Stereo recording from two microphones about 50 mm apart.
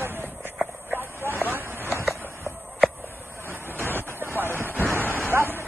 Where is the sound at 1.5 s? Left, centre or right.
Right.